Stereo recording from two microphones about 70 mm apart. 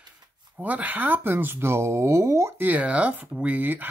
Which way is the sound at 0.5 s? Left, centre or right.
Right.